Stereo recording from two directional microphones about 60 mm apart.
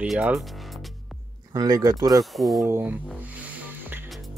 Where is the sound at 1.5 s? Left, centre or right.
Right.